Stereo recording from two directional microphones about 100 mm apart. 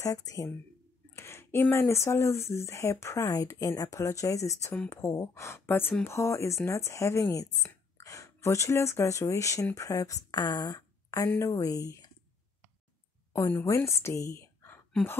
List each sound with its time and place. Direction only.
0.0 s speech: 40° left (ahead or behind)
1.1 s speech: 25° left (ahead or behind)
13.5 s a woman's voice: 25° left (ahead or behind)